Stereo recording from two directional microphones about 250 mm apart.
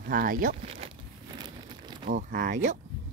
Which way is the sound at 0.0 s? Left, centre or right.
Right.